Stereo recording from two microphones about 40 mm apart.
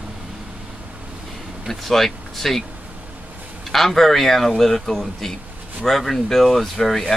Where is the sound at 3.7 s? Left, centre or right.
Centre.